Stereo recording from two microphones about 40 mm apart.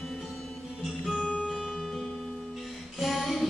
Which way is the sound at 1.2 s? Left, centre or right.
Left.